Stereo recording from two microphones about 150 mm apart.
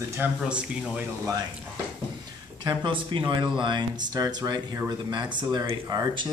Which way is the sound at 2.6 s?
35° right (ahead or behind).